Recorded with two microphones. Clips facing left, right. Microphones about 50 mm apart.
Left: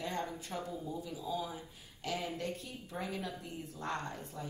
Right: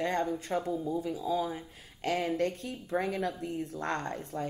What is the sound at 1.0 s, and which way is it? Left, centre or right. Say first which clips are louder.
Speech: right 8 dB; right.